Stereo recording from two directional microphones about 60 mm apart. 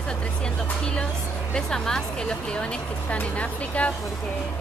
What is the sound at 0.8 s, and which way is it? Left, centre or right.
Speech, centre.